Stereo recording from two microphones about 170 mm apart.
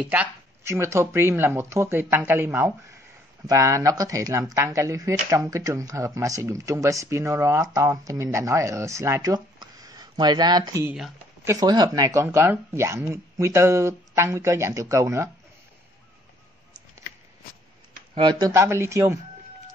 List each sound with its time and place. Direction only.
0.0 s speech: 10° right (ahead or behind)
10.9 s speech: 10° right (ahead or behind)
11.6 s speech: 25° right (ahead or behind)
18.1 s speech: 25° right (ahead or behind)